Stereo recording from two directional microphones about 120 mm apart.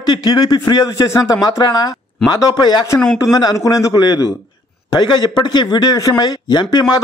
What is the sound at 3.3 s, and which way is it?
A man's voice, 30° left (ahead or behind).